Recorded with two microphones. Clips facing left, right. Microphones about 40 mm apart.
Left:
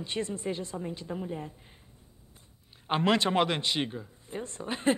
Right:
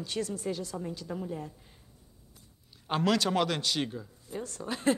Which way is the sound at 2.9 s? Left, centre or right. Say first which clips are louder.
Left 2 dB; left.